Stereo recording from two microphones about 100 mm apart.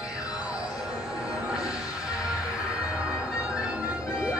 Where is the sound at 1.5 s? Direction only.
5° right (ahead or behind).